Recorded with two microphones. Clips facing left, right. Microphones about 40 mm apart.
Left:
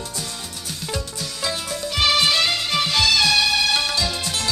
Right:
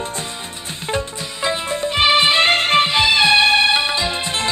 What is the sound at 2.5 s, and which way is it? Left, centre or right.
Music, right.